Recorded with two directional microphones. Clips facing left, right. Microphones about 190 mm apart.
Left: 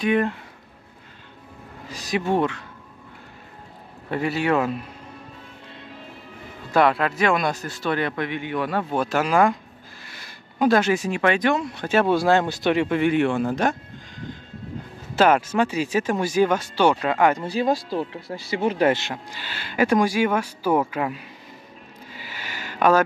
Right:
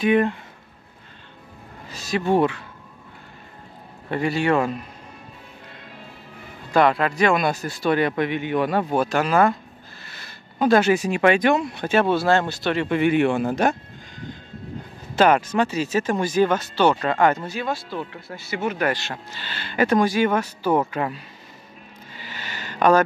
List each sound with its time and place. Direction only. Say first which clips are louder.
0.0 s a man's voice: right 2 dB; centre (ahead or behind)
1.9 s speech: even; 15° left (ahead or behind)
2.2 s speech: right 4 dB; 5° right (ahead or behind)
4.1 s a man's voice: right 1 dB; 5° left (ahead or behind)
6.7 s speech: right 1 dB; centre (ahead or behind); by 9.0 s 15° right (ahead or behind)
9.0 s speech: left 1 dB; 5° left (ahead or behind)
10.0 s a sound: even; 10° left (ahead or behind)
10.7 s speech: right 3 dB; 5° right (ahead or behind)
11.9 s speech: even; 10° left (ahead or behind)
12.8 s a man's voice: right 1 dB; centre (ahead or behind)
13.1 s speech: right 1 dB; 10° right (ahead or behind)
15.1 s speech: even; 5° left (ahead or behind)
17.5 s speech: left 5 dB; 35° left (ahead or behind); by 21.2 s 10° left (ahead or behind)
22.1 s a sound: right 1 dB; 10° left (ahead or behind)